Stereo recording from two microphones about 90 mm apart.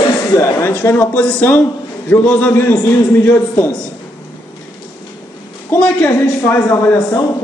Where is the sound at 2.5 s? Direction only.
30° left (ahead or behind).